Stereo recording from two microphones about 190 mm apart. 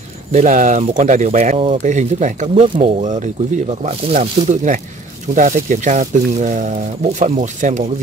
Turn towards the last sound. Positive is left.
turn(degrees=-40)  # may be behind; listen again after turning